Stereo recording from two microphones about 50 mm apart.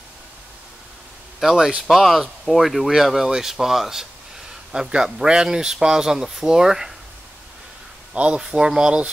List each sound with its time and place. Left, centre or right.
1.4 s a man's voice: centre
8.1 s speech: right